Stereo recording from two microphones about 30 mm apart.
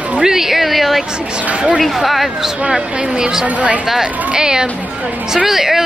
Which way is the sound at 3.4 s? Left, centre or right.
Right.